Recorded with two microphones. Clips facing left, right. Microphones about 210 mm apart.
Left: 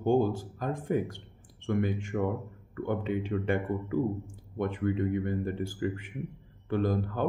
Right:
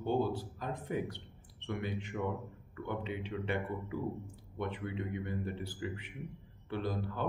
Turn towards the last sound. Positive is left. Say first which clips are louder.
# left 8 dB
turn(degrees=45)  # may be behind; listen again after turning